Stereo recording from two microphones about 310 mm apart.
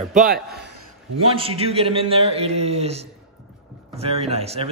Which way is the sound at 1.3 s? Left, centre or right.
Centre.